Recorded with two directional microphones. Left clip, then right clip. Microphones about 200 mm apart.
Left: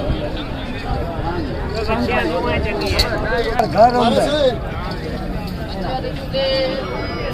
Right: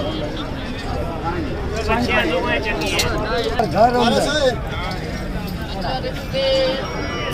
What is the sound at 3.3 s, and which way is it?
Speech, 15° left (ahead or behind).